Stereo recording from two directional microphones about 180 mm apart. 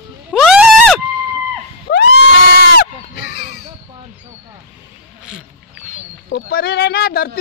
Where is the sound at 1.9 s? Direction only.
70° left (ahead or behind).